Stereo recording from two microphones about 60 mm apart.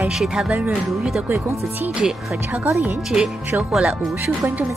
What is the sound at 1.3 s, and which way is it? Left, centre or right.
Speech, right.